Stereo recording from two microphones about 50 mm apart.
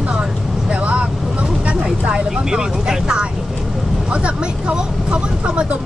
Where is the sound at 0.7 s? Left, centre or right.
Right.